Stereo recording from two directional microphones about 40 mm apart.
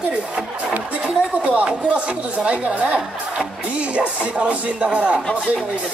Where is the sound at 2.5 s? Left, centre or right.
Right.